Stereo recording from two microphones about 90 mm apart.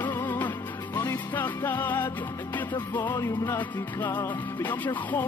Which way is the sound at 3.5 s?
20° left (ahead or behind).